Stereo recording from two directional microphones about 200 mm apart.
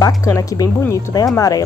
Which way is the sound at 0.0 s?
15° left (ahead or behind).